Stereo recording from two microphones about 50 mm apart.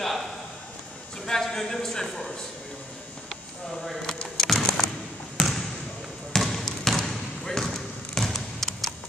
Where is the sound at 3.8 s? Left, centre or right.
Centre.